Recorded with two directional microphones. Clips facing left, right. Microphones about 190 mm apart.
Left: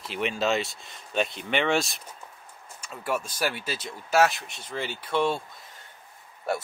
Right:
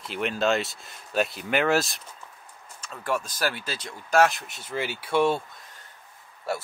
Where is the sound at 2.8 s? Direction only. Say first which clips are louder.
Right 1 dB; 10° left (ahead or behind); by 5.4 s 5° right (ahead or behind).